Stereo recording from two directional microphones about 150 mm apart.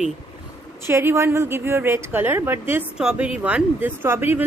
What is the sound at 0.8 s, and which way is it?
A woman's voice, 15° right (ahead or behind).